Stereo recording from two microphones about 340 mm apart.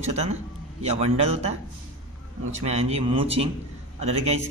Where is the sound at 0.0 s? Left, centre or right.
Centre.